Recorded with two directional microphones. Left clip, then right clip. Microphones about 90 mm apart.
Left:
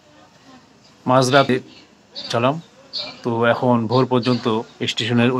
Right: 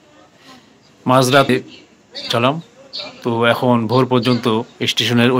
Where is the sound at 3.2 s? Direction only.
30° right (ahead or behind).